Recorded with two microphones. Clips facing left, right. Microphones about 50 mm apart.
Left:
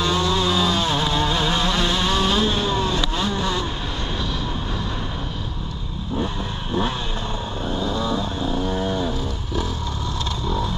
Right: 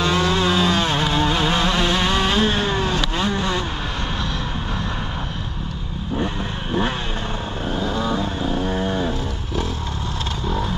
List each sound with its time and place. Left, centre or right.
0.0 s vehicle: right
6.1 s vehicle: right